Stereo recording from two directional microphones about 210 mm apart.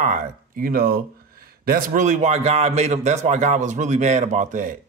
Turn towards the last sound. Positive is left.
turn(degrees=-35)  # may be behind; listen again after turning